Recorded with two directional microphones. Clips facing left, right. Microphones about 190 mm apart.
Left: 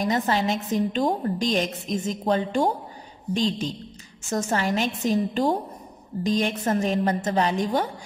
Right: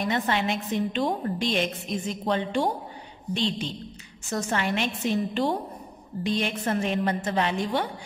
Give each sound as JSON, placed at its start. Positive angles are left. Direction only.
{"t": 0.0, "sound": "a woman's voice", "side_deg": 40}